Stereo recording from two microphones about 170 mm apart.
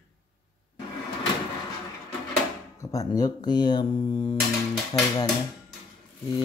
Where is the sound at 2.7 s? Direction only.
20° left (ahead or behind).